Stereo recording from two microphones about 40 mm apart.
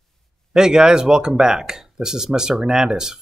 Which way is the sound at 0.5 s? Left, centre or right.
Centre.